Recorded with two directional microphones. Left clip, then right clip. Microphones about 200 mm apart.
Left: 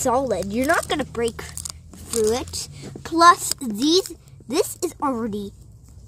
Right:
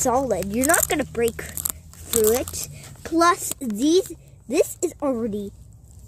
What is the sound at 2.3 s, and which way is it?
A child's voice, 25° left (ahead or behind).